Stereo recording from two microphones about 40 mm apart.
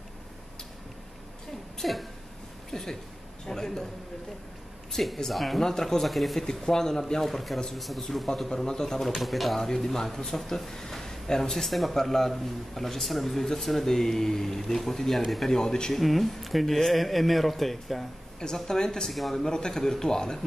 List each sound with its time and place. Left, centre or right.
1.8 s speech: centre
2.7 s speech: centre
4.9 s speech: centre
6.5 s speech: centre
8.5 s speech: centre
9.1 s speech: centre
16.0 s speech: centre
18.4 s speech: centre
19.5 s speech: centre